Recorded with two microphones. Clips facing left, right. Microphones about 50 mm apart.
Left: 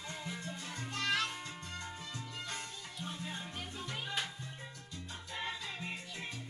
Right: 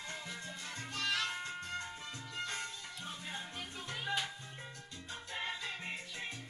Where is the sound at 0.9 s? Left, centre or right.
Left.